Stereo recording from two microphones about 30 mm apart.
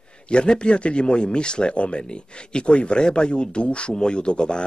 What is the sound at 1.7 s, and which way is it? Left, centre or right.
Speech, left.